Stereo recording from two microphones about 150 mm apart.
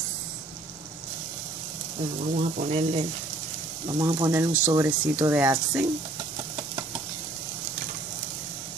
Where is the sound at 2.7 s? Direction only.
45° right (ahead or behind).